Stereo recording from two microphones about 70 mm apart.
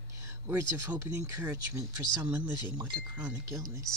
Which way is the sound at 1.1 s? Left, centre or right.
Right.